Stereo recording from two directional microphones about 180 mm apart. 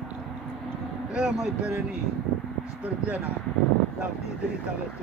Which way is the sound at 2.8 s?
10° right (ahead or behind).